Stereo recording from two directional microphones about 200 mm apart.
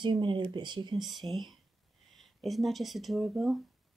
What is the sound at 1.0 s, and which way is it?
Speech, centre (ahead or behind).